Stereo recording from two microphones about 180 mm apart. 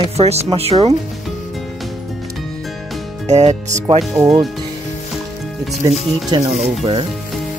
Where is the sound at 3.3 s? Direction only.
40° right (ahead or behind).